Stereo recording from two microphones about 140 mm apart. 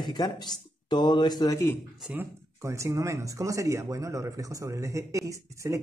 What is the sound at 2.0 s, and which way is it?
Speech, 10° right (ahead or behind).